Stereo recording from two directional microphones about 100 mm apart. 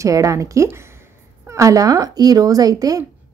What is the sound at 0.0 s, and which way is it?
Speech, 35° right (ahead or behind).